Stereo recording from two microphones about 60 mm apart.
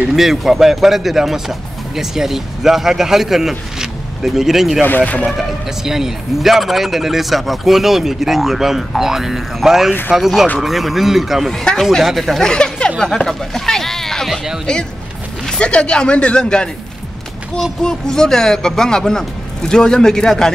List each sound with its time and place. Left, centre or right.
0.1 s speech: centre
4.8 s speech: left
5.9 s speech: centre
12.4 s speech: centre
15.4 s speech: centre
17.8 s speech: centre